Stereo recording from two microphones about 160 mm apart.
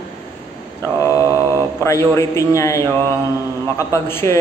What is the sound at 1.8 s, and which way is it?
A man's voice, 20° left (ahead or behind).